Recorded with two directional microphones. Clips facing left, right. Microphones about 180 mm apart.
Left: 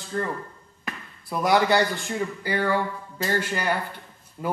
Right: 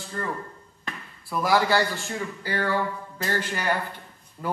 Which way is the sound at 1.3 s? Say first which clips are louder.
Left 2 dB; 20° left (ahead or behind).